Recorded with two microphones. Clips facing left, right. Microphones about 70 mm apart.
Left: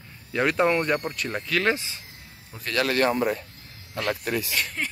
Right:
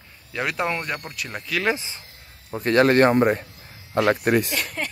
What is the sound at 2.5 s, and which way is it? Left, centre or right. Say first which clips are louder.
Speech: right 8 dB; right.